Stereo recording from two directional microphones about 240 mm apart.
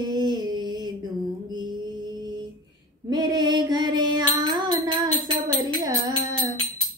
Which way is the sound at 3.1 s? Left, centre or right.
Centre.